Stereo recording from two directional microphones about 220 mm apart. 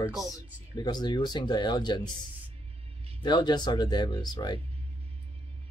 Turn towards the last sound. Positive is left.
turn(degrees=20)  # may be behind; listen again after turning